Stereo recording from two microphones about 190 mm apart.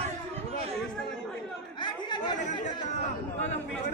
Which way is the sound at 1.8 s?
25° left (ahead or behind).